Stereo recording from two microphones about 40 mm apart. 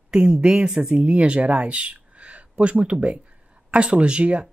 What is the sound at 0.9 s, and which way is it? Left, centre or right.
Speech, right.